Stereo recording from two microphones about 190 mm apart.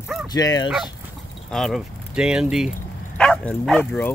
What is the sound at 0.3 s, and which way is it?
Speech, 20° left (ahead or behind).